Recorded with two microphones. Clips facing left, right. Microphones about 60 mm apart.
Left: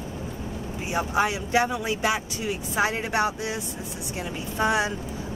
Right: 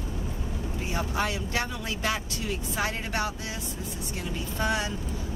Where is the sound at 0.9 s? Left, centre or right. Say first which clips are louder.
Left 6 dB; centre.